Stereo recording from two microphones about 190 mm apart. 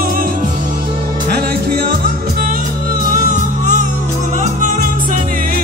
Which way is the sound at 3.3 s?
40° right (ahead or behind).